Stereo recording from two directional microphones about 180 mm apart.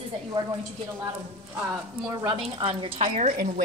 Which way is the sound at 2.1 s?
20° right (ahead or behind).